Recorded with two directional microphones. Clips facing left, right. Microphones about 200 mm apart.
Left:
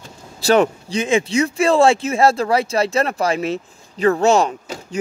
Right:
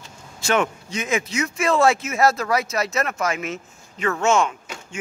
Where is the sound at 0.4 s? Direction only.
35° left (ahead or behind).